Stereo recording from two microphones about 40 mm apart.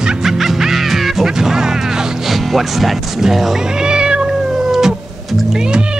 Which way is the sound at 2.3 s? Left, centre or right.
Centre.